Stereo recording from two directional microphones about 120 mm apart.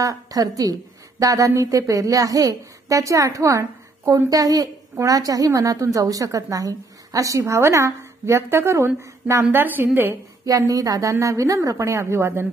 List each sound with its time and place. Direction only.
0.0 s a woman's voice: 30° right (ahead or behind)
10.7 s a woman's voice: 30° right (ahead or behind)